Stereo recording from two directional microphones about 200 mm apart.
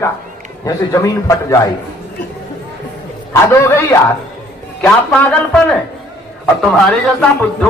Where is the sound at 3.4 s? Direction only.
10° left (ahead or behind).